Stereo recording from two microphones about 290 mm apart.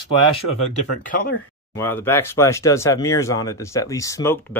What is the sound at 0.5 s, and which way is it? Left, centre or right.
Speech, left.